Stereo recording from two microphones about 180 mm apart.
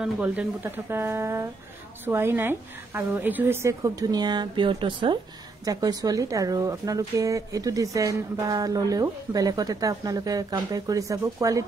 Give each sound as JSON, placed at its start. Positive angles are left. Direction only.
{"t": 0.0, "sound": "a woman's voice", "side_deg": -5}